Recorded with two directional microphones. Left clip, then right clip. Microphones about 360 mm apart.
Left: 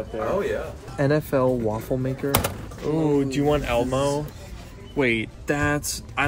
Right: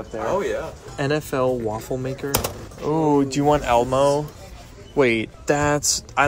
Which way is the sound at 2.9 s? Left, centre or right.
Centre.